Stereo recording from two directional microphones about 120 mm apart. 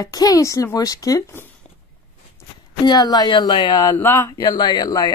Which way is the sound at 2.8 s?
35° left (ahead or behind).